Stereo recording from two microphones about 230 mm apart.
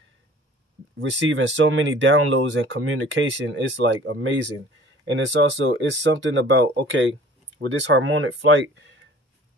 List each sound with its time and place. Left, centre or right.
1.3 s speech: right